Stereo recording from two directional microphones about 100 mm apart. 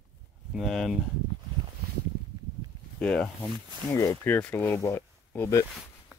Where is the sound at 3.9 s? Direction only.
25° left (ahead or behind).